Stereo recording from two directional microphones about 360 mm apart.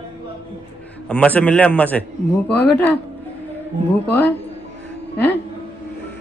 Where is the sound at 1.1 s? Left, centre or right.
Centre.